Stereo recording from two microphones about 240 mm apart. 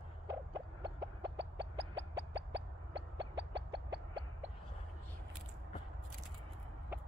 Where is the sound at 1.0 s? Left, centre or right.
Right.